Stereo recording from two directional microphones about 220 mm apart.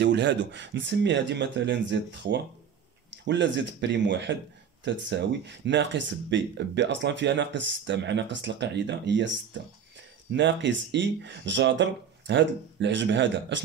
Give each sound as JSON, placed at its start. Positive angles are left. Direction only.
{"t": 0.0, "sound": "speech", "side_deg": -50}